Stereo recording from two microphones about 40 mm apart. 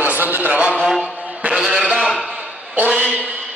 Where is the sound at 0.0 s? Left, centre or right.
Right.